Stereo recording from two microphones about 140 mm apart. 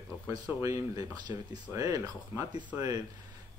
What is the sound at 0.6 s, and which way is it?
Speech, 25° right (ahead or behind).